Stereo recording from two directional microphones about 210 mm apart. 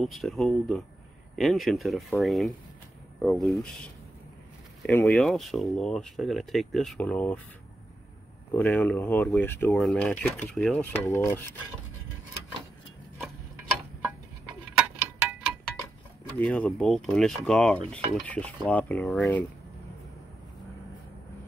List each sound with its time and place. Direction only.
0.0 s cutlery: centre (ahead or behind)
8.5 s speech: 5° left (ahead or behind)
14.8 s a sound: 5° right (ahead or behind)
16.3 s cutlery: 5° left (ahead or behind)